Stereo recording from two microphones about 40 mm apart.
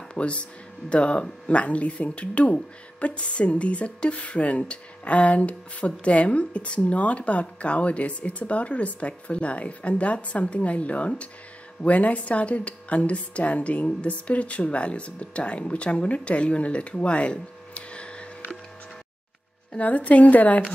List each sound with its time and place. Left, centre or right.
0.1 s speech: left
16.9 s a sound: left
19.8 s speech: left